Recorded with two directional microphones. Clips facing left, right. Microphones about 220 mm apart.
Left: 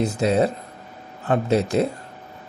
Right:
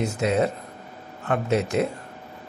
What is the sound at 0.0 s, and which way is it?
Speech, 35° left (ahead or behind).